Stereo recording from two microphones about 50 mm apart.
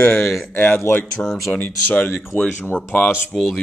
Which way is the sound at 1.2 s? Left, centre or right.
Centre.